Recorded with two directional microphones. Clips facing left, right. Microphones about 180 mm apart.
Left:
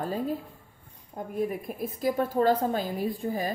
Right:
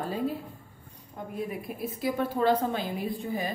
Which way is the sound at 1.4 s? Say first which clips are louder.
Left 2 dB; 45° left (ahead or behind).